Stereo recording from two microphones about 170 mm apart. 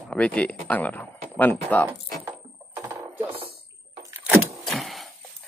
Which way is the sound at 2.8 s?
10° right (ahead or behind).